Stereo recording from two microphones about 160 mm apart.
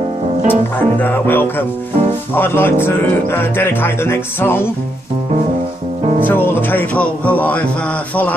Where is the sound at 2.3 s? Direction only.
15° left (ahead or behind).